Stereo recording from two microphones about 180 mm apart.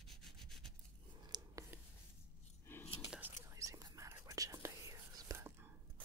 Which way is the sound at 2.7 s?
10° left (ahead or behind).